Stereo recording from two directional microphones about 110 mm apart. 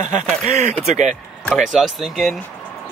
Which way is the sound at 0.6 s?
90° right.